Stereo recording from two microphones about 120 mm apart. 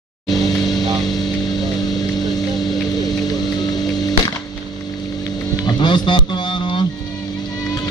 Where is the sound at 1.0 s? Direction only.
35° left (ahead or behind).